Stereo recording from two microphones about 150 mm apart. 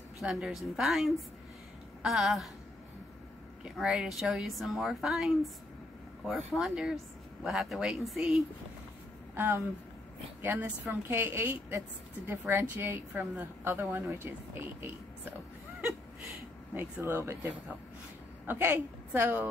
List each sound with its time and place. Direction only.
0.2 s a woman's voice: centre (ahead or behind)
3.6 s a woman's voice: 5° right (ahead or behind)
9.3 s speech: 15° right (ahead or behind)
16.7 s speech: 15° right (ahead or behind)